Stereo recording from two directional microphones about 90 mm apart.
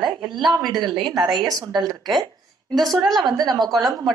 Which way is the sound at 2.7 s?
Centre (ahead or behind).